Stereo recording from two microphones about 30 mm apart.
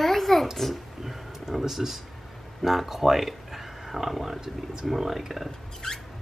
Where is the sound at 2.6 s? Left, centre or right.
Centre.